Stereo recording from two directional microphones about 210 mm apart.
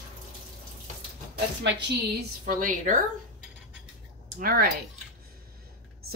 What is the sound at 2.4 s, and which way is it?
Speech, 40° right (ahead or behind).